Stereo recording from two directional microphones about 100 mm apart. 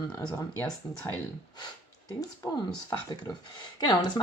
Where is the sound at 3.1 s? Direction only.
45° left (ahead or behind).